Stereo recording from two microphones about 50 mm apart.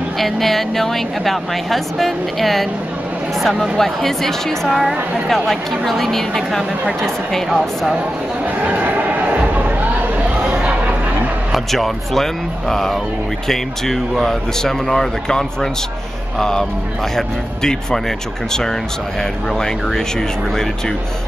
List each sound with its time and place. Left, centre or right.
0.2 s a woman's voice: centre
8.6 s a sound: right
11.5 s a woman's voice: centre